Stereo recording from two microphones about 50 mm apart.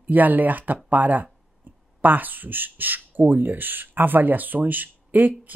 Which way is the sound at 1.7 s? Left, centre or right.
Right.